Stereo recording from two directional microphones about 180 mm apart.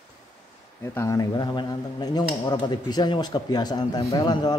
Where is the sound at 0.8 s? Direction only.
15° left (ahead or behind).